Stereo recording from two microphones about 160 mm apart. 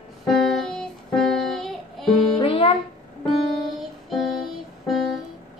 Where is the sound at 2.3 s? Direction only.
35° left (ahead or behind).